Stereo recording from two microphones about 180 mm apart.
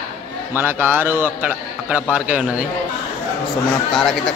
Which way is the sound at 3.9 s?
Centre (ahead or behind).